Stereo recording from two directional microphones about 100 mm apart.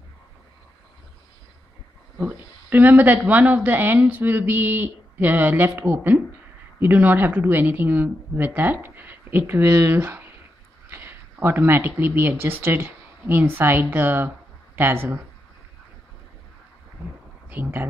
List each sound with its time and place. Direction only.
2.1 s a woman's voice: 15° right (ahead or behind)
17.5 s speech: 20° right (ahead or behind)